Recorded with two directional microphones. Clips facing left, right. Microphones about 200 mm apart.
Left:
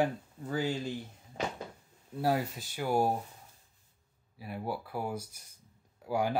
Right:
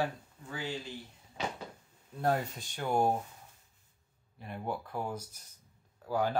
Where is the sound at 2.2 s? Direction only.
5° left (ahead or behind).